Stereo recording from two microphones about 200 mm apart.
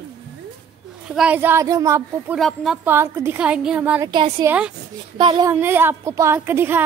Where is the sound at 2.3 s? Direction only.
Centre (ahead or behind).